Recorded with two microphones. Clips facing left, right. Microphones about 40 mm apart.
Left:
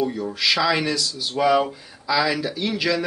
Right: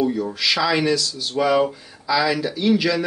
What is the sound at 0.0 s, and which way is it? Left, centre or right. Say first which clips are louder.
Speech: right 2 dB; centre.